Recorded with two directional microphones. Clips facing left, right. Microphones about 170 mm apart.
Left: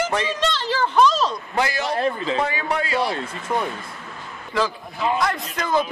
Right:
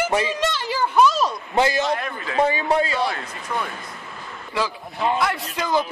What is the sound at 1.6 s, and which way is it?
Speech, 25° right (ahead or behind).